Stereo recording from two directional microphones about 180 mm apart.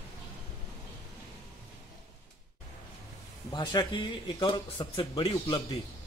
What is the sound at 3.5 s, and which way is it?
Speech, 25° left (ahead or behind).